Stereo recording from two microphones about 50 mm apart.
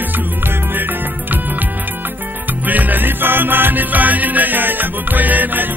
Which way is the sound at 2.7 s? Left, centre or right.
Right.